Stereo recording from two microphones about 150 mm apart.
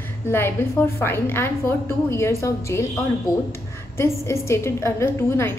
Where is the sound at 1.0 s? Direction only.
15° left (ahead or behind).